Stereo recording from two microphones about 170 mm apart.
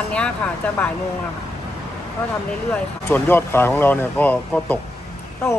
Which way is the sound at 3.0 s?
15° left (ahead or behind).